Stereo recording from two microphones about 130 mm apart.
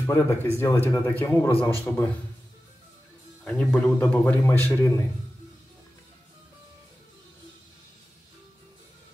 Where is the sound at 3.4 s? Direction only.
5° left (ahead or behind).